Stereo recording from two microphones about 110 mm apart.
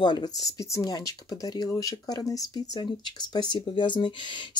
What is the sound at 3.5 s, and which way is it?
Speech, 45° left (ahead or behind).